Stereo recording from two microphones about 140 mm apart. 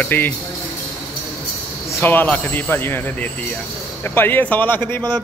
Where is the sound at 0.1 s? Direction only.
15° left (ahead or behind).